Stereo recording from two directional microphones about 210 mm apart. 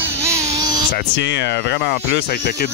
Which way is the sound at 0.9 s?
55° left (ahead or behind).